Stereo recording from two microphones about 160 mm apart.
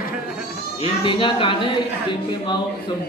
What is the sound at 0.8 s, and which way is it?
A man's voice, 30° left (ahead or behind).